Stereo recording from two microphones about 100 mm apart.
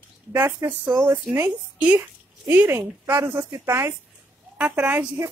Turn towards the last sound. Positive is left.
turn(degrees=-15)  # may be behind; listen again after turning